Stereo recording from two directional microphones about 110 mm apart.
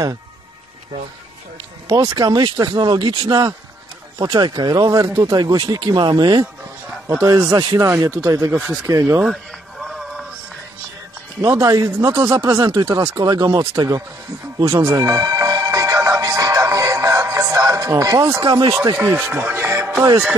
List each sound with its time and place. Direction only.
1.9 s speech: 40° right (ahead or behind)
7.1 s speech: 25° right (ahead or behind)
9.2 s a sound: centre (ahead or behind)
11.4 s speech: 20° right (ahead or behind)
14.8 s music: 25° right (ahead or behind)
18.5 s speech: 45° right (ahead or behind)
18.9 s speech: 20° right (ahead or behind)